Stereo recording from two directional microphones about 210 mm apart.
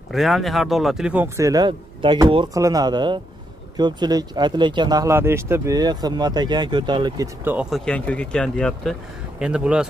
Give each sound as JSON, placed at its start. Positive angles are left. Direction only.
{"t": 0.1, "sound": "speech", "side_deg": 0}
{"t": 7.7, "sound": "speech", "side_deg": 5}